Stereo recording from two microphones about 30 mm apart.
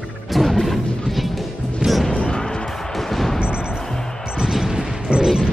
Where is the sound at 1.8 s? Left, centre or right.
Right.